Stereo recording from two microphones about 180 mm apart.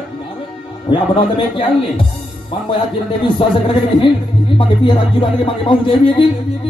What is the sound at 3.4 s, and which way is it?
Speech, 30° left (ahead or behind).